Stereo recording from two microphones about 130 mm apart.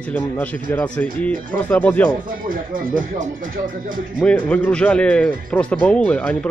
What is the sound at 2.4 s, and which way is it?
Speech, 90° right.